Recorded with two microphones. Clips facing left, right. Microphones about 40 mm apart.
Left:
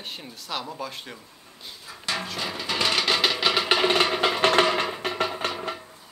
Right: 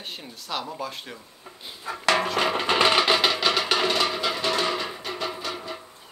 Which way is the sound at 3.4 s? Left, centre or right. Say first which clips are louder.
Left 1 dB; centre.